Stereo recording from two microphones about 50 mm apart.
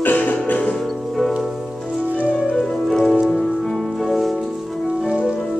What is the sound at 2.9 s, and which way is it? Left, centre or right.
Music, centre.